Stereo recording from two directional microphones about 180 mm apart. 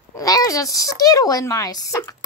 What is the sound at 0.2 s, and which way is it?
Speech, 20° left (ahead or behind).